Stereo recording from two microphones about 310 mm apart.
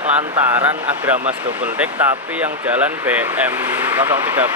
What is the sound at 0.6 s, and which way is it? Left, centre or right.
Speech, centre.